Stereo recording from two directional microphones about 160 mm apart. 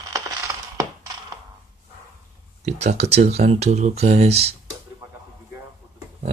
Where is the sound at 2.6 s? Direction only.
45° right (ahead or behind).